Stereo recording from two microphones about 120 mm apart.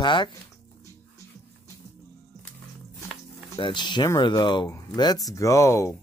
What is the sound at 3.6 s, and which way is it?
Speech, 40° left (ahead or behind).